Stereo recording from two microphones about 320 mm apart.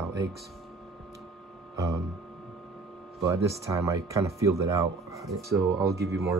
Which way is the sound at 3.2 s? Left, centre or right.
Centre.